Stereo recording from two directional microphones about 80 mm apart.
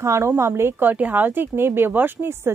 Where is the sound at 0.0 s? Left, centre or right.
Right.